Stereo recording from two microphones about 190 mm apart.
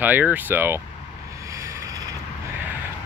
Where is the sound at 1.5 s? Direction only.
15° right (ahead or behind).